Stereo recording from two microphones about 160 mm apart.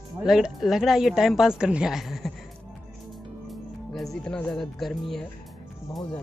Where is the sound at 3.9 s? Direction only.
Centre (ahead or behind).